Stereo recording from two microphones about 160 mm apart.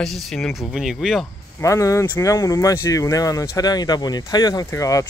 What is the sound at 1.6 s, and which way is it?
Speech, 20° left (ahead or behind).